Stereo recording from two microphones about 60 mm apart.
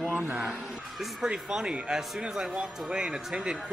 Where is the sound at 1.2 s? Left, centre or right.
Centre.